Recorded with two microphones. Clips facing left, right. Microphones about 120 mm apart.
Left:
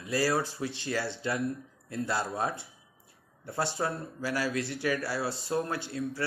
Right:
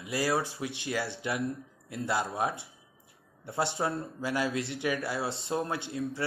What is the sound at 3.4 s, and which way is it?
Speech, 20° right (ahead or behind).